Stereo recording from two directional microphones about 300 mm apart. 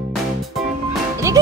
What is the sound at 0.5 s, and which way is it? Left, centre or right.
Music, centre.